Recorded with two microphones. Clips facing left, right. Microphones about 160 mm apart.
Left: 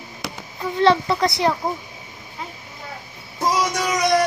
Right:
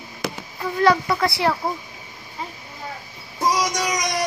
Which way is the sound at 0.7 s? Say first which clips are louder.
Left 1 dB; 25° left (ahead or behind).